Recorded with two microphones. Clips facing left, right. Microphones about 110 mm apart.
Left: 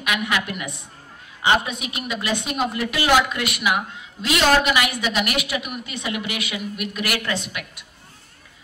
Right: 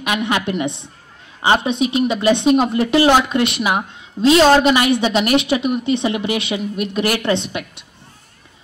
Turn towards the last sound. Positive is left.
turn(degrees=-25)  # may be behind; listen again after turning